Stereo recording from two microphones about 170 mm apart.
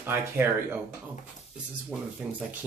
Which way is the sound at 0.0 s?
15° right (ahead or behind).